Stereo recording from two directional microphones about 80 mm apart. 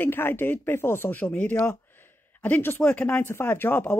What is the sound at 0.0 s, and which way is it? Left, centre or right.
Speech, left.